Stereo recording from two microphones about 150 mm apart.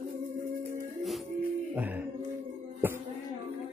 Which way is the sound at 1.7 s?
10° right (ahead or behind).